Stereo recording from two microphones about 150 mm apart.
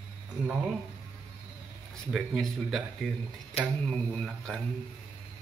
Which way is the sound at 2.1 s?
Centre (ahead or behind).